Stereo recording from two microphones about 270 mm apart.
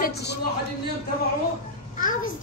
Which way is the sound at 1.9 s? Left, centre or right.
Left.